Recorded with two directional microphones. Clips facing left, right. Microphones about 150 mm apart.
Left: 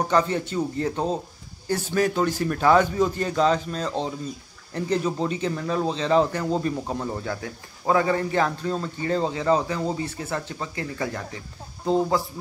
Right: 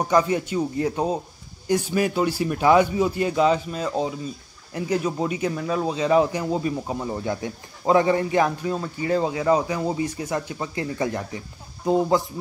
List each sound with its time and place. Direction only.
0.1 s a man's voice: 10° right (ahead or behind)
7.2 s a man's voice: 20° right (ahead or behind)